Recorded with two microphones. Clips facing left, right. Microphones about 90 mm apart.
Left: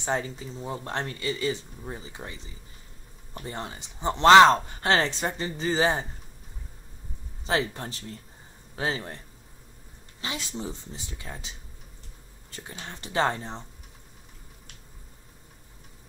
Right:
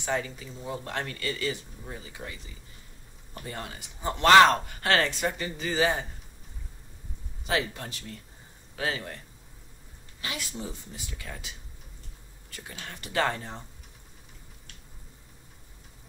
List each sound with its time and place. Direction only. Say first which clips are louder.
0.0 s speech: left 1 dB; 30° left (ahead or behind)
7.4 s speech: left 2 dB; 30° left (ahead or behind)
10.2 s speech: left 2 dB; 25° left (ahead or behind)